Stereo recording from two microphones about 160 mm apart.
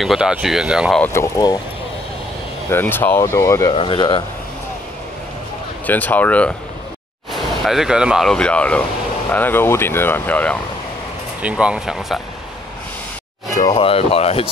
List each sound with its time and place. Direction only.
0.0 s speech: 5° right (ahead or behind)
1.0 s speech: 20° left (ahead or behind)
2.7 s speech: 15° left (ahead or behind)
3.7 s speech: 30° left (ahead or behind)
5.9 s speech: 10° left (ahead or behind)
7.6 s speech: centre (ahead or behind)
11.4 s speech: 5° right (ahead or behind)
13.7 s speech: 35° left (ahead or behind)